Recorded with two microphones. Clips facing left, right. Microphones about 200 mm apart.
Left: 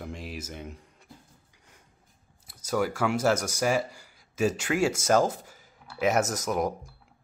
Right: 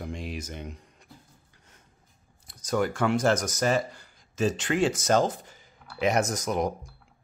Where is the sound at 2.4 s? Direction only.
5° left (ahead or behind).